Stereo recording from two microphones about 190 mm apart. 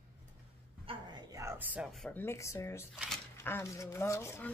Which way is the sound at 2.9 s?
5° right (ahead or behind).